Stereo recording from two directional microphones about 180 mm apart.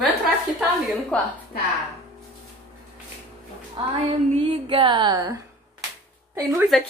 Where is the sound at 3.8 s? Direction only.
30° right (ahead or behind).